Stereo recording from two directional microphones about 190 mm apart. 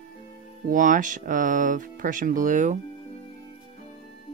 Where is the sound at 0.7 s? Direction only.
45° right (ahead or behind).